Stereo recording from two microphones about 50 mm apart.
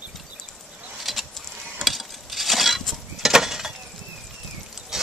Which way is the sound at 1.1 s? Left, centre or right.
Centre.